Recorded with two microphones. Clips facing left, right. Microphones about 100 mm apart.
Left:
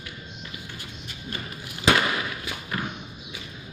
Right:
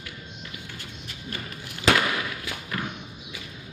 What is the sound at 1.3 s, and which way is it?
Thump, 20° left (ahead or behind).